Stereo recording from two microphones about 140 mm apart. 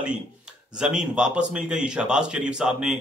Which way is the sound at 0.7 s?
5° right (ahead or behind).